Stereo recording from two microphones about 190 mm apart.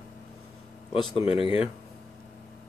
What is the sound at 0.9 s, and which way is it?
Speech, 30° left (ahead or behind).